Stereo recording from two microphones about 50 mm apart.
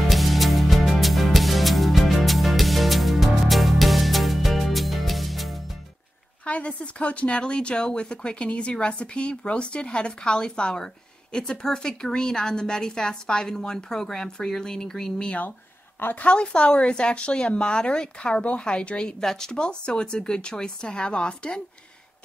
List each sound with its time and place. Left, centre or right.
0.1 s music: centre
6.4 s a woman's voice: left